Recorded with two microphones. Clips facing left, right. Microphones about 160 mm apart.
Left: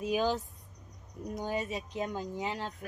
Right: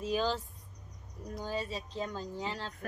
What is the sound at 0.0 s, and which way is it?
Speech, 15° left (ahead or behind).